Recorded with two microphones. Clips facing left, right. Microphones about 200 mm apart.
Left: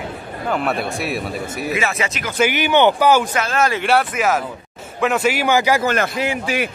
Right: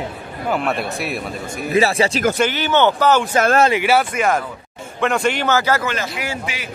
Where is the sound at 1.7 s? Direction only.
35° right (ahead or behind).